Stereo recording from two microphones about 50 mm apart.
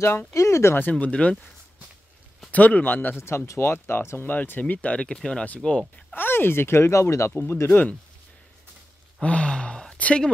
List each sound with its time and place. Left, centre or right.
0.0 s speech: left
0.3 s speech: left
0.9 s speech: left
2.5 s speech: left
3.2 s speech: left
4.9 s speech: centre
6.1 s speech: left
9.2 s a sound: left